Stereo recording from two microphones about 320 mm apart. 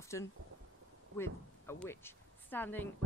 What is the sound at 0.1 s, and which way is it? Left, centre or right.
A woman's voice, centre.